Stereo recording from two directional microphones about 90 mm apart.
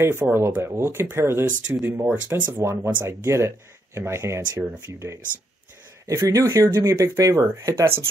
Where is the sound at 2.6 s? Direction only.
30° right (ahead or behind).